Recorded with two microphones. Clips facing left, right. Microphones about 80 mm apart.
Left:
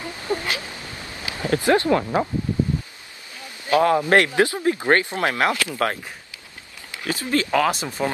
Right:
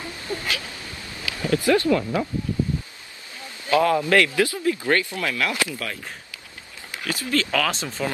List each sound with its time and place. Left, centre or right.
0.3 s a sound: left
1.2 s speech: left
1.9 s speech: left
3.3 s a man's voice: left
7.0 s a man's voice: left